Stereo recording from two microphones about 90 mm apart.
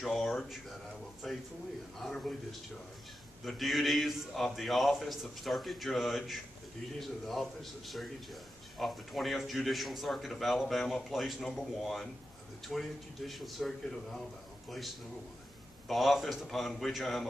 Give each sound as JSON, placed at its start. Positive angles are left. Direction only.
{"t": 0.0, "sound": "a man's voice", "side_deg": 0}
{"t": 3.4, "sound": "a man's voice", "side_deg": 0}
{"t": 15.9, "sound": "a man's voice", "side_deg": 0}